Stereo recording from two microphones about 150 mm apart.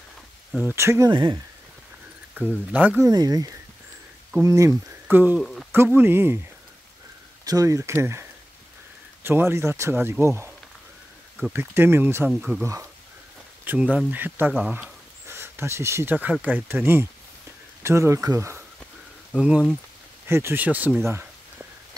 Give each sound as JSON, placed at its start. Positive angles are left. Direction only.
{"t": 0.5, "sound": "speech", "side_deg": -5}
{"t": 0.7, "sound": "speech", "side_deg": -20}
{"t": 1.1, "sound": "speech", "side_deg": -30}
{"t": 2.4, "sound": "speech", "side_deg": -15}
{"t": 3.1, "sound": "speech", "side_deg": -25}
{"t": 5.4, "sound": "speech", "side_deg": 0}
{"t": 5.7, "sound": "speech", "side_deg": -15}
{"t": 7.4, "sound": "speech", "side_deg": -25}
{"t": 11.5, "sound": "speech", "side_deg": -15}
{"t": 12.3, "sound": "speech", "side_deg": -5}
{"t": 13.7, "sound": "speech", "side_deg": -5}
{"t": 19.3, "sound": "speech", "side_deg": -5}
{"t": 20.2, "sound": "speech", "side_deg": -15}
{"t": 21.0, "sound": "a sound", "side_deg": -15}